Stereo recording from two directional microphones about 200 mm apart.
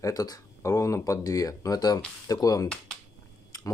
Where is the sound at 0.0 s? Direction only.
20° left (ahead or behind).